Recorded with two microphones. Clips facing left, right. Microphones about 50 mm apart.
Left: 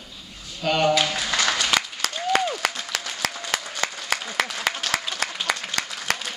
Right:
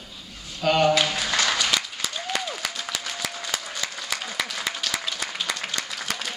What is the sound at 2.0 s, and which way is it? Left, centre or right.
Applause, left.